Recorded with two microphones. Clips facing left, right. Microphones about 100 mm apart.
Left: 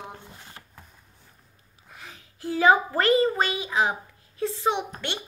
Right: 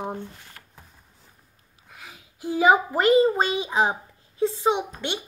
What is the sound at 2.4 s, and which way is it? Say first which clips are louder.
A child's voice: right 1 dB; 15° right (ahead or behind).